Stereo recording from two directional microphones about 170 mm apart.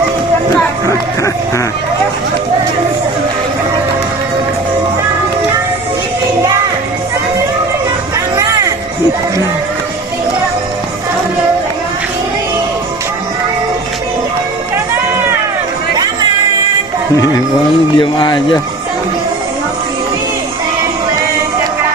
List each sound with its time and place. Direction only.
8.4 s a sound: 20° right (ahead or behind)
15.9 s chatter: 25° right (ahead or behind)
17.9 s speech: 25° left (ahead or behind)